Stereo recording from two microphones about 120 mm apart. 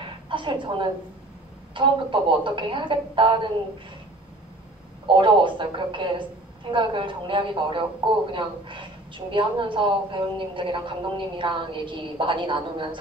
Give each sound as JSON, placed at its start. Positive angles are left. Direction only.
{"t": 0.0, "sound": "a sound", "side_deg": -45}
{"t": 1.8, "sound": "a woman's voice", "side_deg": -45}
{"t": 5.0, "sound": "a woman's voice", "side_deg": -45}